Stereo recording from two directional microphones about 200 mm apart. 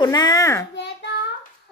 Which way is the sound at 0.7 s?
60° left (ahead or behind).